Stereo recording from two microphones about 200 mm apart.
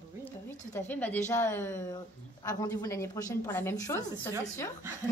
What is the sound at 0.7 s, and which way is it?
Speech, 10° left (ahead or behind).